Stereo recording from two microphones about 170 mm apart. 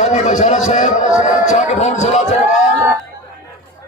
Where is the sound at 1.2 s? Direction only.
45° left (ahead or behind).